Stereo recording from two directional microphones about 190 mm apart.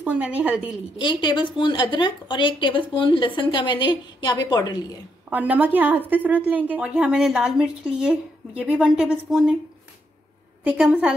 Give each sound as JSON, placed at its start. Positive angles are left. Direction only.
{"t": 0.0, "sound": "a woman's voice", "side_deg": -10}
{"t": 0.9, "sound": "a woman's voice", "side_deg": 25}
{"t": 5.3, "sound": "a woman's voice", "side_deg": -10}
{"t": 10.6, "sound": "a woman's voice", "side_deg": -5}